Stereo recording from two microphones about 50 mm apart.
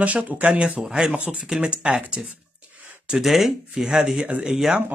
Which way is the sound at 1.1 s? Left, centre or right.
Right.